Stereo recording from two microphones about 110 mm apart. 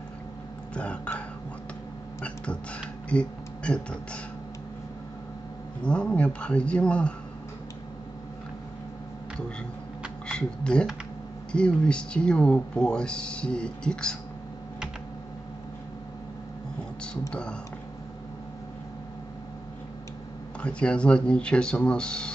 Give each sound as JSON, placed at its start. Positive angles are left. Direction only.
{"t": 0.7, "sound": "speech", "side_deg": 10}
{"t": 2.2, "sound": "speech", "side_deg": 10}
{"t": 5.9, "sound": "speech", "side_deg": 10}
{"t": 10.2, "sound": "speech", "side_deg": 5}
{"t": 17.3, "sound": "speech", "side_deg": 10}
{"t": 20.6, "sound": "speech", "side_deg": 10}